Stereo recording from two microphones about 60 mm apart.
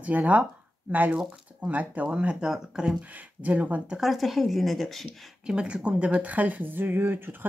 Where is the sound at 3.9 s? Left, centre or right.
Centre.